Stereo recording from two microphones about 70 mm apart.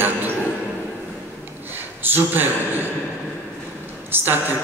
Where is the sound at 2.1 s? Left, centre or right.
Right.